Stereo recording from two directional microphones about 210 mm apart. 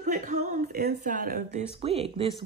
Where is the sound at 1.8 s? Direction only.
25° right (ahead or behind).